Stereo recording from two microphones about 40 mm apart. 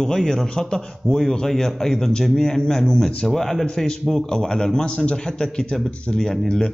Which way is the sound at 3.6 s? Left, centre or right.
Centre.